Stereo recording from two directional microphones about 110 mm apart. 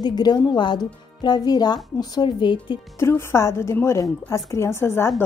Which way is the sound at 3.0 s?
25° left (ahead or behind).